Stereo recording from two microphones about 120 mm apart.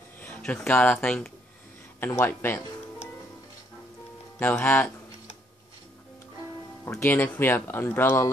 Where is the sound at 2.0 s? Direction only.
20° left (ahead or behind).